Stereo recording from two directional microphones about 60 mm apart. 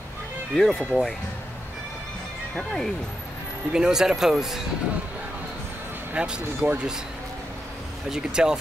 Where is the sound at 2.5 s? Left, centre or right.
Centre.